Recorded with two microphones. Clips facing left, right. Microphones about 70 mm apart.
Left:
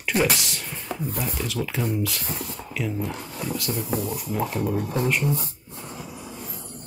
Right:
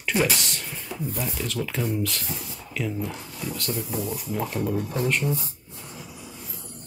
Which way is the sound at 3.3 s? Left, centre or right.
Left.